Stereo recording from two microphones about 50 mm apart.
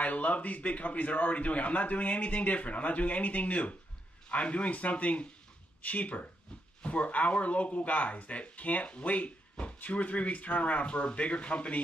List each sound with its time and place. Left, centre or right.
0.0 s speech: left